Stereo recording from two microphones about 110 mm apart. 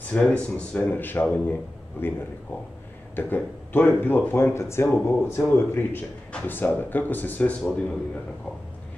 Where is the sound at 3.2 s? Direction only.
15° left (ahead or behind).